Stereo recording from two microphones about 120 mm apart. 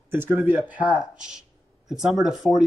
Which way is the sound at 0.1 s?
20° right (ahead or behind).